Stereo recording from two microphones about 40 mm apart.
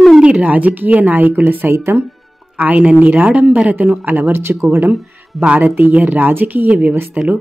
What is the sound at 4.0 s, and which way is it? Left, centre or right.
Speech, right.